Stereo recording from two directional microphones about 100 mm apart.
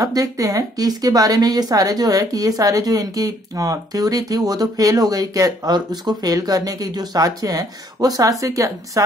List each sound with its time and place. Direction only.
0.0 s a woman's voice: 35° right (ahead or behind)